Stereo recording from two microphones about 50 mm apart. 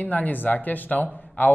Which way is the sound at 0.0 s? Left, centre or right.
Left.